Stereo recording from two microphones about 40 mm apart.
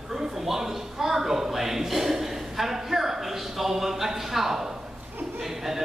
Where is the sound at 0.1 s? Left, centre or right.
Centre.